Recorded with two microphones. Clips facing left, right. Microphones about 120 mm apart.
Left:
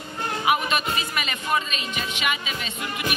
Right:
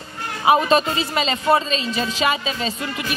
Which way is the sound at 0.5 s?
35° right (ahead or behind).